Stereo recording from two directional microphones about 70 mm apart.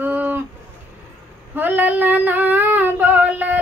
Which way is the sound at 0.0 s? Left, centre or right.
Right.